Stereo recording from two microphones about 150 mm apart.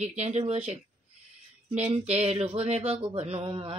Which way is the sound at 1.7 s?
45° right (ahead or behind).